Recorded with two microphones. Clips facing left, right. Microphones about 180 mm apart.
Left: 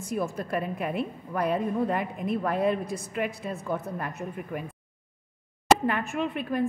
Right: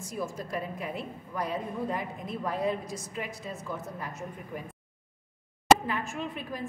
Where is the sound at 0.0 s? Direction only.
60° left (ahead or behind).